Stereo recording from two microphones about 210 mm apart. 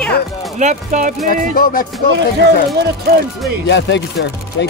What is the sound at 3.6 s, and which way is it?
Speech, 55° left (ahead or behind).